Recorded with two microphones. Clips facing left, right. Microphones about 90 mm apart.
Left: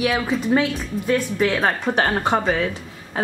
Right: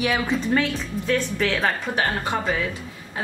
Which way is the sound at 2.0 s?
40° left (ahead or behind).